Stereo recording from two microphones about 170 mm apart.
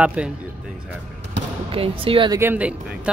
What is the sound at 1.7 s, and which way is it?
Speech, 30° right (ahead or behind).